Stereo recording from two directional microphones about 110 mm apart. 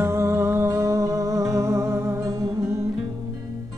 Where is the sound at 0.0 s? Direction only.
25° right (ahead or behind).